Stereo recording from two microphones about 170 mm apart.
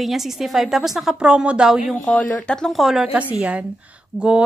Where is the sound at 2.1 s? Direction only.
10° left (ahead or behind).